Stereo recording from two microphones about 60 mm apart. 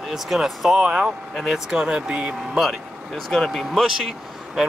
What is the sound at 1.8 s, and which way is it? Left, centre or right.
Speech, centre.